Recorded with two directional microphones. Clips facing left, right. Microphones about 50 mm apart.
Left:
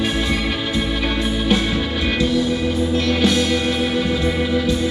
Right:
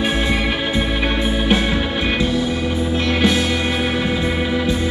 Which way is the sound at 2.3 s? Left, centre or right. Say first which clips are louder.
Left 1 dB; centre.